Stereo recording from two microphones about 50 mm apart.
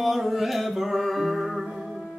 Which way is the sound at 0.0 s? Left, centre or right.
Centre.